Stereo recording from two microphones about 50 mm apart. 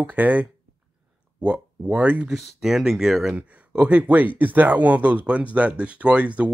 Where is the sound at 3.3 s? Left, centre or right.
Right.